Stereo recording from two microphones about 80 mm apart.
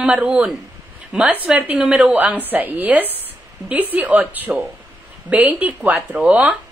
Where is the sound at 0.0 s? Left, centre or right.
Centre.